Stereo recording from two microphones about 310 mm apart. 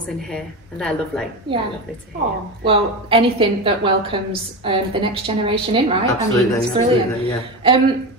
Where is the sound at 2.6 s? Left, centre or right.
Centre.